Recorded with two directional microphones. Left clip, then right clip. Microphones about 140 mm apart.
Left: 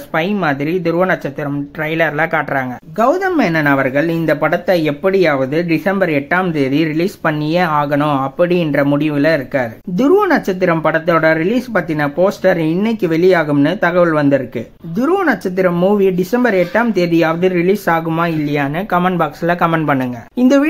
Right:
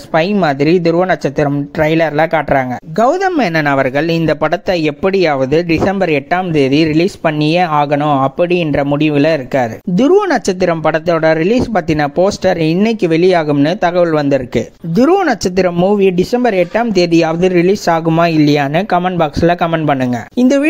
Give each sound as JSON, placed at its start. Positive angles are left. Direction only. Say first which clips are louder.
{"t": 0.1, "sound": "speech", "louder": "right 4 dB", "side_deg": -45}
{"t": 3.1, "sound": "speech", "louder": "even", "side_deg": -45}
{"t": 5.9, "sound": "speech", "louder": "right 1 dB", "side_deg": -50}
{"t": 8.0, "sound": "speech", "louder": "right 3 dB", "side_deg": -20}
{"t": 8.4, "sound": "speech", "louder": "right 1 dB", "side_deg": -35}
{"t": 15.8, "sound": "speech", "louder": "right 2 dB", "side_deg": -30}
{"t": 18.9, "sound": "speech", "louder": "right 2 dB", "side_deg": -30}
{"t": 20.3, "sound": "speech", "louder": "even", "side_deg": -20}